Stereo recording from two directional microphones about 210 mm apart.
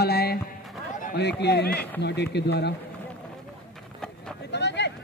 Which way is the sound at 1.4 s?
50° left (ahead or behind).